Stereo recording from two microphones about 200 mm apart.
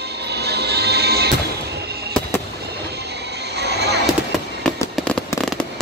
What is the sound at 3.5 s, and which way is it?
Music, 55° right (ahead or behind).